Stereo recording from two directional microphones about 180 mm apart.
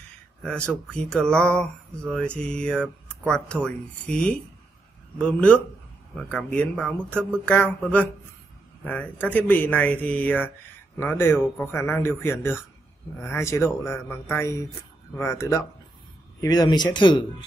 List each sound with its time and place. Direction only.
0.7 s speech: 5° left (ahead or behind); by 17.2 s 25° left (ahead or behind)